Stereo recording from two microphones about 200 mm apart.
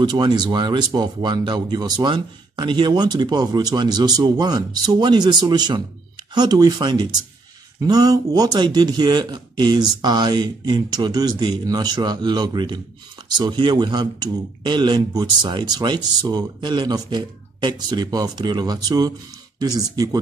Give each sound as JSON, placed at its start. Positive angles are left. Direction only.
{"t": 0.0, "sound": "speech", "side_deg": -20}